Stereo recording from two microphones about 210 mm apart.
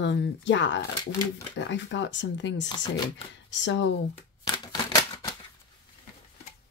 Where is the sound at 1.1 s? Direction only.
15° left (ahead or behind).